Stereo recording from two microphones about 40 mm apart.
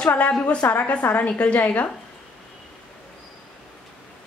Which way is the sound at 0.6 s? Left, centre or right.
Left.